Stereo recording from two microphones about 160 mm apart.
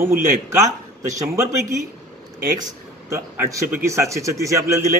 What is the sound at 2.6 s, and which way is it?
Speech, 20° right (ahead or behind).